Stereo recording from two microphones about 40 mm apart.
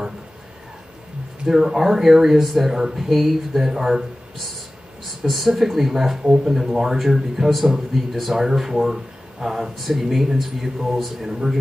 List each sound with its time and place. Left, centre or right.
1.4 s a man's voice: centre
5.2 s a man's voice: centre
6.2 s a man's voice: right